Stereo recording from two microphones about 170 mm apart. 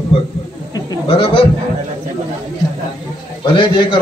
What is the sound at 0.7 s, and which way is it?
Goat, 30° left (ahead or behind).